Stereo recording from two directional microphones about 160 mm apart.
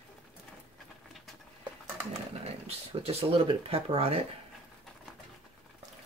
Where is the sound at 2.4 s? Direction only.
40° right (ahead or behind).